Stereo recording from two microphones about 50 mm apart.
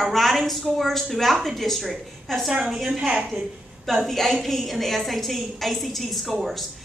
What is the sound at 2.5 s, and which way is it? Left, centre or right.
Speech, centre.